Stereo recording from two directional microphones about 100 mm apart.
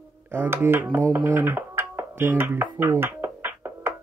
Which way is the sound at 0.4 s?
20° right (ahead or behind).